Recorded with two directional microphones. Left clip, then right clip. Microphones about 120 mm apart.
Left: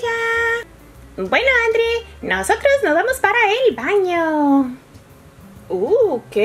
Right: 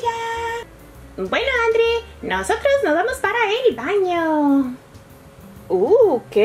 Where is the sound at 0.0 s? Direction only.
35° left (ahead or behind).